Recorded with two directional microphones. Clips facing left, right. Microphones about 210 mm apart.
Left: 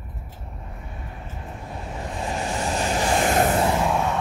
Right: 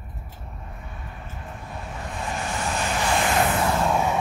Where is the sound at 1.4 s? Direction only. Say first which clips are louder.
Left 2 dB; 30° left (ahead or behind).